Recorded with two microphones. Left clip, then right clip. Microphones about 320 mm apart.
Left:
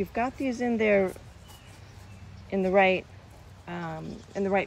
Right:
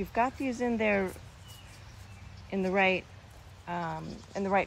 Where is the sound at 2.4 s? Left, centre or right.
Right.